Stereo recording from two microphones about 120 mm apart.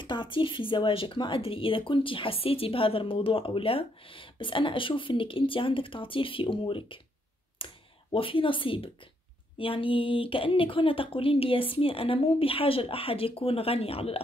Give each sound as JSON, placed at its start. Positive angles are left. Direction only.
{"t": 0.0, "sound": "speech", "side_deg": 40}
{"t": 7.6, "sound": "computer keyboard", "side_deg": 45}
{"t": 8.1, "sound": "speech", "side_deg": 50}